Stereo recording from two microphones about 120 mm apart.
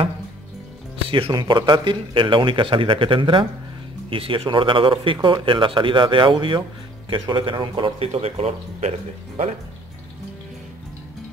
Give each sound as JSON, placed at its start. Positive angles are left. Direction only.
{"t": 1.0, "sound": "music", "side_deg": -50}
{"t": 1.3, "sound": "speech", "side_deg": -35}